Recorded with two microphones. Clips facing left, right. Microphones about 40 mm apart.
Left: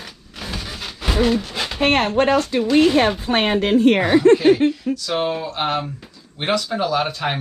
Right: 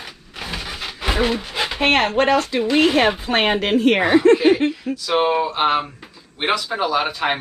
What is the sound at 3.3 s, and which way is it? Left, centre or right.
Speech, right.